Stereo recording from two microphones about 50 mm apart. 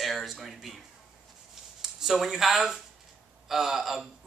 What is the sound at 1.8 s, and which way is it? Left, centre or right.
A man's voice, centre.